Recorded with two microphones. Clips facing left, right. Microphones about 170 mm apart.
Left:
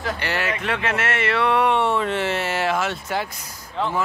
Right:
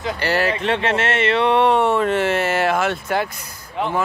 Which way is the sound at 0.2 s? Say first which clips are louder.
Right 5 dB; 35° right (ahead or behind).